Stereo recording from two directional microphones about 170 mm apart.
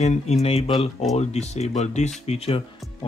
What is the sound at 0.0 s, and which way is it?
Speech, 40° left (ahead or behind).